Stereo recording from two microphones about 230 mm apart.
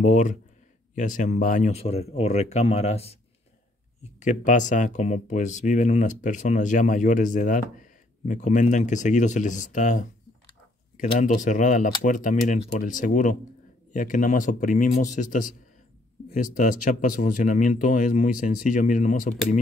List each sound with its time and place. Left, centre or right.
0.0 s speech: left